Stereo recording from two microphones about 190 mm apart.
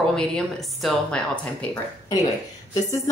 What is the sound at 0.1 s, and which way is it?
A woman's voice, centre (ahead or behind).